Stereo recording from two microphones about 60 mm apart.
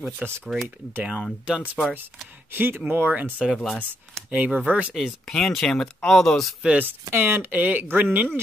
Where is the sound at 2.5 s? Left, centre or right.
Right.